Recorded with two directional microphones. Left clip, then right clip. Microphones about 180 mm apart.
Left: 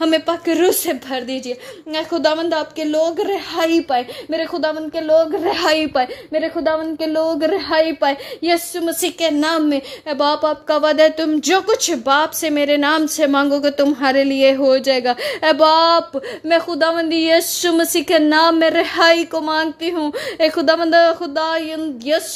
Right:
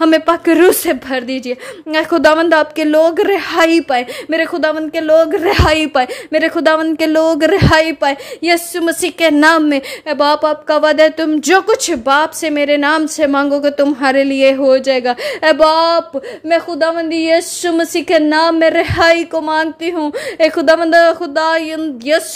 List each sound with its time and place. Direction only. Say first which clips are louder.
0.0 s a woman's voice: right 6 dB; 25° right (ahead or behind)
5.6 s a woman's voice: right 2 dB; 20° right (ahead or behind)
6.3 s a woman's voice: right 7 dB; 45° right (ahead or behind)
7.8 s a woman's voice: right 2 dB; 15° right (ahead or behind)
9.2 s a woman's voice: right 8 dB; 35° right (ahead or behind)